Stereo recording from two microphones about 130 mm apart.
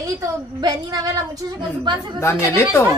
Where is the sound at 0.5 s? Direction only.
30° right (ahead or behind).